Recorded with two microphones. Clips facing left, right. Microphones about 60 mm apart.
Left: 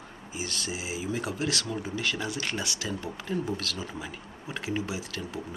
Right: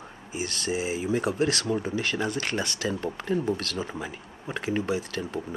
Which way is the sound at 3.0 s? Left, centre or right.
Right.